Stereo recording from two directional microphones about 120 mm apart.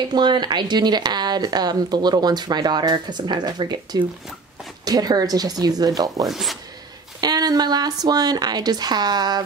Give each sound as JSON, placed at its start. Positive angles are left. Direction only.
{"t": 0.1, "sound": "speech", "side_deg": -35}
{"t": 6.2, "sound": "speech", "side_deg": 0}
{"t": 7.2, "sound": "speech", "side_deg": -35}